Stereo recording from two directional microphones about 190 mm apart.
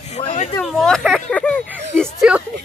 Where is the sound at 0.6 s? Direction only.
Centre (ahead or behind).